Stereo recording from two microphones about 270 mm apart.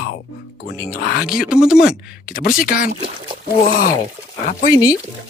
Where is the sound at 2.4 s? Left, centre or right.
Left.